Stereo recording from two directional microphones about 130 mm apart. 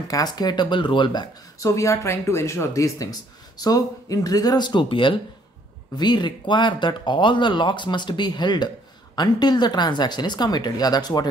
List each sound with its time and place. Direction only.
0.1 s speech: 30° left (ahead or behind)